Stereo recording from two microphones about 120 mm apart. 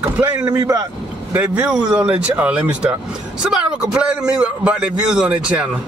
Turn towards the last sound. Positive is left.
turn(degrees=-10)  # may be behind; listen again after turning